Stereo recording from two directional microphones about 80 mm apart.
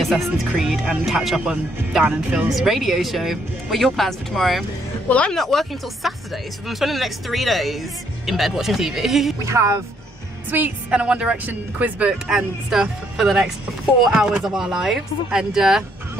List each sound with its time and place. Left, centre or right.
0.0 s speech: centre
2.5 s speech: centre
5.0 s a woman's voice: centre
5.3 s speech: centre
9.4 s speech: right
10.5 s a woman's voice: right
10.9 s speech: centre